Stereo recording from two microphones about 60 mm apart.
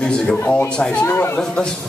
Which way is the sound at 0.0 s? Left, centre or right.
Centre.